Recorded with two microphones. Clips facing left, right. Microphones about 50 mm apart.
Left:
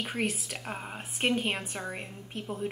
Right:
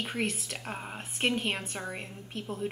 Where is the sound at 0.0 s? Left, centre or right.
Centre.